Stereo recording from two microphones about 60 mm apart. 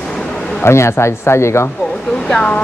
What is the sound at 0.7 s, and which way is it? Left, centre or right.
Speech, left.